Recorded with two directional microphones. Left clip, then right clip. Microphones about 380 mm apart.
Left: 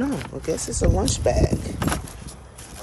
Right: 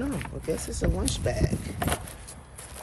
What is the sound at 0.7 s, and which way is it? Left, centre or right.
Speech, centre.